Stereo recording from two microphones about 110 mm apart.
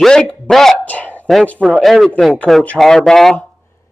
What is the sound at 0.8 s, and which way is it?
Speech, 15° left (ahead or behind).